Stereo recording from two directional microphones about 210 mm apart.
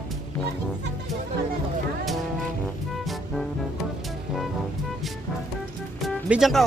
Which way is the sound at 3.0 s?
Centre (ahead or behind).